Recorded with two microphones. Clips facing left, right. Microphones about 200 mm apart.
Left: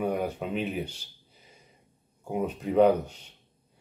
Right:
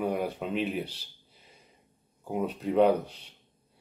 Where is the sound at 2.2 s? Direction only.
5° left (ahead or behind).